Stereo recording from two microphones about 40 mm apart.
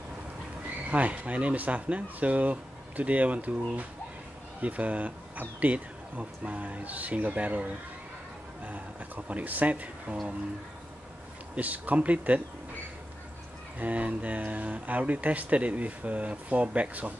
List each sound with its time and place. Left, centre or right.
0.8 s speech: right
11.5 s speech: right
13.7 s speech: right